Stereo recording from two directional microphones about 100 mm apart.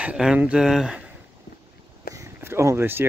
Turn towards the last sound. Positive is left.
turn(degrees=-20)  # may be behind; listen again after turning